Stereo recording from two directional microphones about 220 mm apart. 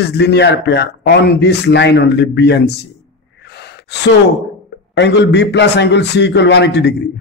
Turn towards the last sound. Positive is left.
turn(degrees=50)  # may be behind; listen again after turning